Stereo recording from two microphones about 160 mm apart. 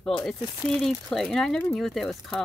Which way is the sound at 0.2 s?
Centre (ahead or behind).